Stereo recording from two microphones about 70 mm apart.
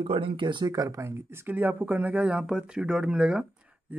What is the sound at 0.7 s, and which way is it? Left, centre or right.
Speech, right.